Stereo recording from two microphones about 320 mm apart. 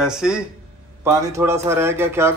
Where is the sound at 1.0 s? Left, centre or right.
Centre.